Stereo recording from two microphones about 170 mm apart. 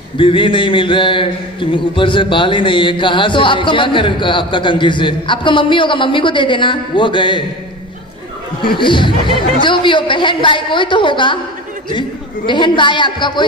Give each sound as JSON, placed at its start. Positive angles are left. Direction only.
{"t": 0.2, "sound": "a man's voice", "side_deg": 30}
{"t": 8.7, "sound": "a man's voice", "side_deg": 30}
{"t": 12.4, "sound": "a man's voice", "side_deg": 25}